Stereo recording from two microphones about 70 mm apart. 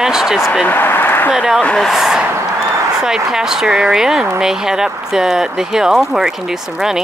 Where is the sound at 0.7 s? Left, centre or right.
Left.